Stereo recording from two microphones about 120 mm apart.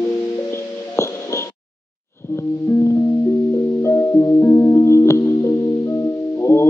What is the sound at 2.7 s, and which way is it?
Music, 20° left (ahead or behind).